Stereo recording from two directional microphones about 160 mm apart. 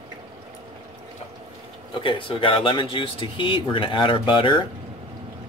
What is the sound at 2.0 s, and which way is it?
Speech, 30° left (ahead or behind).